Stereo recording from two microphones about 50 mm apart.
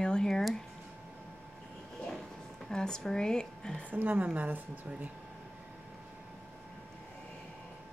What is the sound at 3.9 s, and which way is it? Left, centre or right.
A woman's voice, right.